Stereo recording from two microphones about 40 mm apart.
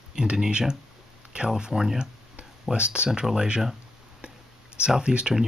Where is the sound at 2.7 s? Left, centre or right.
Right.